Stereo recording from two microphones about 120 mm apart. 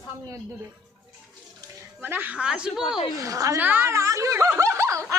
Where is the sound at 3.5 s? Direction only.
15° right (ahead or behind).